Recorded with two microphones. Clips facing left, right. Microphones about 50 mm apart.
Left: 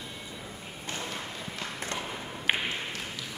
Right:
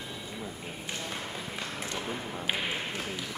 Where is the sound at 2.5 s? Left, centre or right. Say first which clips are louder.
Left 4 dB; left.